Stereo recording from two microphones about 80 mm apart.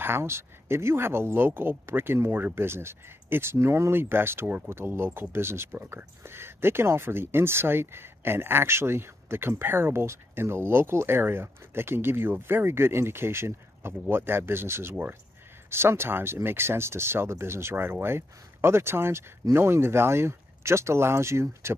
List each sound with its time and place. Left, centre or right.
0.0 s speech: right